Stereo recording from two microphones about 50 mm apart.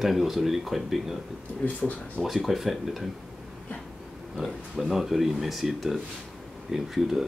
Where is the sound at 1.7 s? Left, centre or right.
Left.